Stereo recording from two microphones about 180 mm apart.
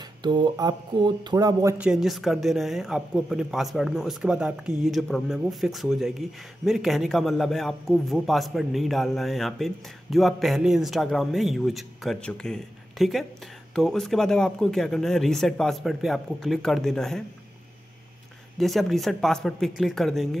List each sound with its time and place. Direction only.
0.0 s speech: 25° right (ahead or behind)
1.8 s a man's voice: centre (ahead or behind)
18.6 s a man's voice: centre (ahead or behind)